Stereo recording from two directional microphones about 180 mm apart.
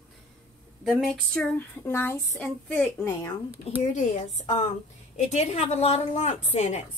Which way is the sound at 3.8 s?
40° left (ahead or behind).